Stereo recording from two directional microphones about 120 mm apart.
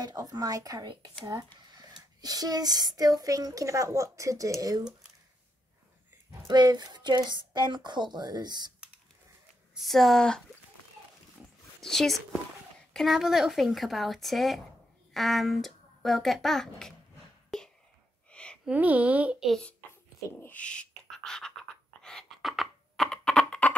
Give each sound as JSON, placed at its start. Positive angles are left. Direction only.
{"t": 0.0, "sound": "speech", "side_deg": -30}
{"t": 6.4, "sound": "speech", "side_deg": -35}
{"t": 9.8, "sound": "speech", "side_deg": 0}
{"t": 11.8, "sound": "speech", "side_deg": 0}
{"t": 17.5, "sound": "whispering", "side_deg": 5}
{"t": 18.3, "sound": "a sound", "side_deg": 10}
{"t": 18.7, "sound": "speech", "side_deg": -15}
{"t": 19.4, "sound": "speech", "side_deg": 5}
{"t": 19.9, "sound": "dog", "side_deg": 20}
{"t": 22.0, "sound": "a sound", "side_deg": 0}